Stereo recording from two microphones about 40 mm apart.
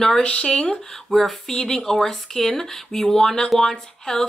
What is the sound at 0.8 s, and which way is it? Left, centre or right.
Speech, centre.